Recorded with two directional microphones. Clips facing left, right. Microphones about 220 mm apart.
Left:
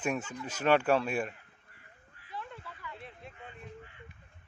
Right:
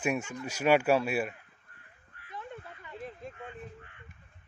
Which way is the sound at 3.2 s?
45° right (ahead or behind).